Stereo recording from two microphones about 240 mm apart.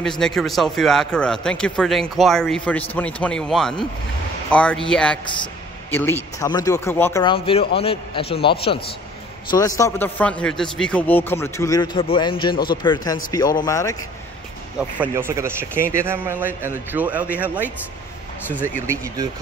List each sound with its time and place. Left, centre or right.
0.2 s a man's voice: centre
7.3 s a man's voice: left
9.5 s a man's voice: centre
15.0 s a man's voice: centre